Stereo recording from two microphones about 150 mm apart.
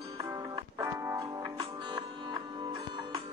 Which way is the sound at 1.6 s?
30° right (ahead or behind).